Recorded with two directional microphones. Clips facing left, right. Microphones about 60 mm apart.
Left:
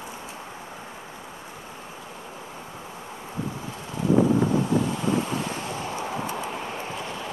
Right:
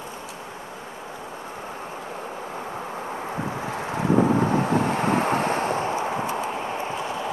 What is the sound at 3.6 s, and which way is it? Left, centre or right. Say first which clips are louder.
Wind noise: right 1 dB; right.